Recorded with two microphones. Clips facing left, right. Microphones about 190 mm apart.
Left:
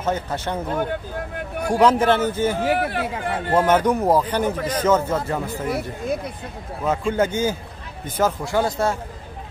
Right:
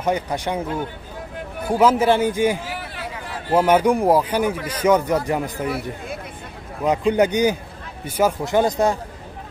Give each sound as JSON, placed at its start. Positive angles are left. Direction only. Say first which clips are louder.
{"t": 0.0, "sound": "a man's voice", "louder": "right 2 dB", "side_deg": -15}
{"t": 1.6, "sound": "a man's voice", "louder": "even", "side_deg": -5}
{"t": 2.6, "sound": "a sound", "louder": "left 10 dB", "side_deg": 60}
{"t": 3.5, "sound": "a man's voice", "louder": "right 2 dB", "side_deg": -10}
{"t": 6.8, "sound": "a man's voice", "louder": "right 3 dB", "side_deg": -15}